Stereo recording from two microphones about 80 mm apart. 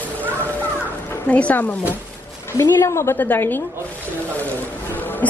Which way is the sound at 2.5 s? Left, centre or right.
Left.